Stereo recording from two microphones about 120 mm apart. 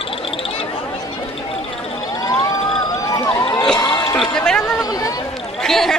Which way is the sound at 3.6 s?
5° left (ahead or behind).